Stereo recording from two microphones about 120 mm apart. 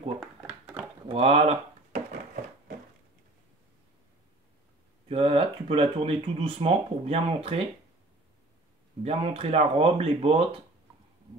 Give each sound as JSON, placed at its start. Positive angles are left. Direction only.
{"t": 1.0, "sound": "a sound", "side_deg": -55}
{"t": 5.0, "sound": "speech", "side_deg": -55}
{"t": 9.0, "sound": "speech", "side_deg": -55}